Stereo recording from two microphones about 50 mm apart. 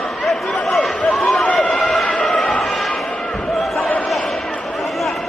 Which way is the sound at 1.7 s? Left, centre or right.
Centre.